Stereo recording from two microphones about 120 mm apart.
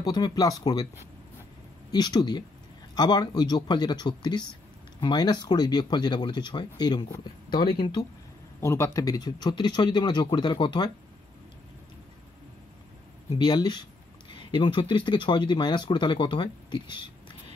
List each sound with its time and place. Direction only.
0.0 s speech: 35° left (ahead or behind)
1.9 s speech: 35° left (ahead or behind)
8.5 s speech: 20° left (ahead or behind); by 10.9 s 40° left (ahead or behind)
13.4 s speech: 35° left (ahead or behind)